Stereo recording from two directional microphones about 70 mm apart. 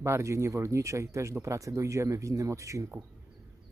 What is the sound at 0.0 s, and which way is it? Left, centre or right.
Speech, right.